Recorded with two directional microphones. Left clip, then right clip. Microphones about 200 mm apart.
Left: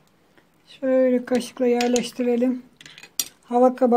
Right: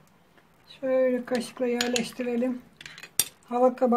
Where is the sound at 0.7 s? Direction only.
40° left (ahead or behind).